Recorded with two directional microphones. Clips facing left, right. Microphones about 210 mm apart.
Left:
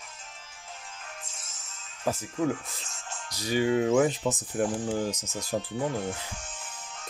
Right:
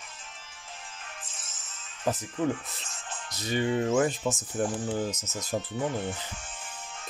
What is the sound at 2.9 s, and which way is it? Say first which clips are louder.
Music: right 1 dB; 40° left (ahead or behind).